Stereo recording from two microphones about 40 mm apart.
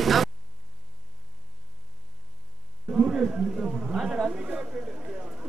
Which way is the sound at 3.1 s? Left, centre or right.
Centre.